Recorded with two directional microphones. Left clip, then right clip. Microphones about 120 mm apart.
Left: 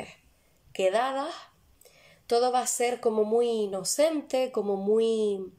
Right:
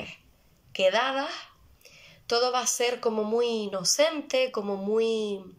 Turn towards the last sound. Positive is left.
turn(degrees=40)  # may be behind; listen again after turning